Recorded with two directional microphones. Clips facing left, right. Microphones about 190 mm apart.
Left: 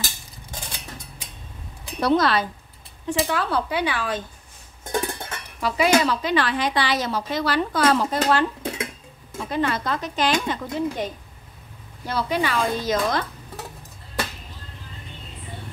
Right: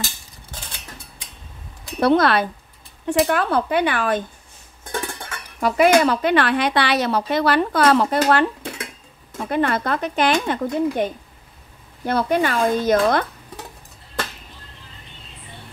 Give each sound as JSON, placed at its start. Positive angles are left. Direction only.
{"t": 2.0, "sound": "speech", "side_deg": -60}
{"t": 5.6, "sound": "speech", "side_deg": -50}
{"t": 12.1, "sound": "speech", "side_deg": -50}